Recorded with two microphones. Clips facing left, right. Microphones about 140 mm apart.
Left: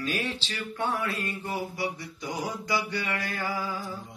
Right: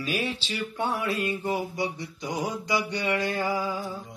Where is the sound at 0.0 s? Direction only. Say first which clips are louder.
Right 2 dB; 10° right (ahead or behind).